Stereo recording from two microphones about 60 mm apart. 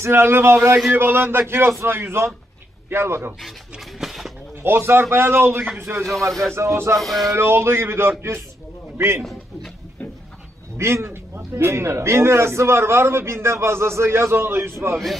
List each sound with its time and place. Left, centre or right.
0.0 s a man's voice: right
3.8 s a sound: centre
4.6 s a man's voice: right
6.0 s speech: centre
6.5 s a man's voice: right
7.0 s speech: centre
7.3 s a man's voice: right
10.8 s a man's voice: right